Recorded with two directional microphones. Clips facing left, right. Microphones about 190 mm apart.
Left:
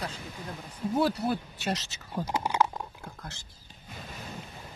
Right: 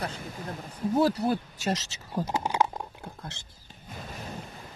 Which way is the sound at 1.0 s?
40° right (ahead or behind).